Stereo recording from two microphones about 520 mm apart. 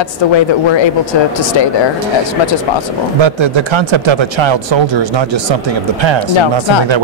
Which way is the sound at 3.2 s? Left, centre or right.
Right.